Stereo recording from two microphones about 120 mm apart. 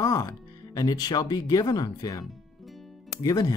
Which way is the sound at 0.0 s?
30° left (ahead or behind).